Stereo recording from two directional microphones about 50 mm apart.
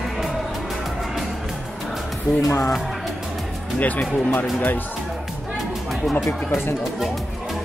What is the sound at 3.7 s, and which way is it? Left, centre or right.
Speech, left.